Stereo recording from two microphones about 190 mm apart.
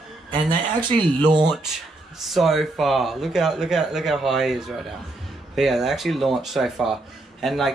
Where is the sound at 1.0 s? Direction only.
25° right (ahead or behind).